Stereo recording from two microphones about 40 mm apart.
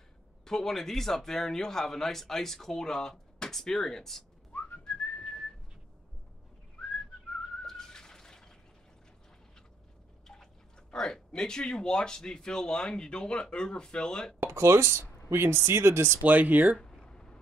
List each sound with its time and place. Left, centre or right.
0.5 s speech: centre
4.5 s whistling: left
4.8 s whistling: left
7.6 s a sound: centre
10.2 s speech: centre
14.5 s speech: right
16.2 s speech: right
16.8 s a sound: centre